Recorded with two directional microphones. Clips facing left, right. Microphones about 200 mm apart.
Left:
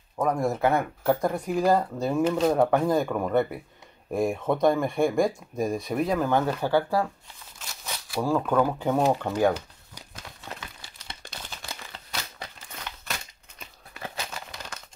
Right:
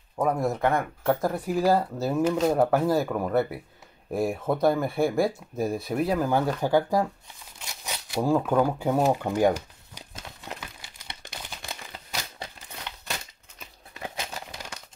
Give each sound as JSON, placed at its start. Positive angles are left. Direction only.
{"t": 0.1, "sound": "speech", "side_deg": -5}
{"t": 7.5, "sound": "a sound", "side_deg": -15}
{"t": 8.4, "sound": "crumpling", "side_deg": -10}
{"t": 13.9, "sound": "crumpling", "side_deg": -20}